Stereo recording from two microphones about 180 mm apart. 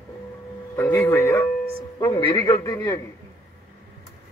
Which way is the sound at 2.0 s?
25° left (ahead or behind).